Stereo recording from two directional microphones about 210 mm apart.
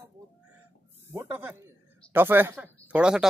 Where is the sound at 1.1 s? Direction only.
10° right (ahead or behind).